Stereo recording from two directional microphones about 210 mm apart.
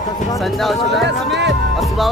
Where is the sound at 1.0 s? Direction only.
55° right (ahead or behind).